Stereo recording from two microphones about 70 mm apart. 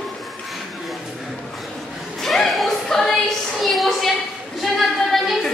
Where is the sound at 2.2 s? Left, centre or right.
Centre.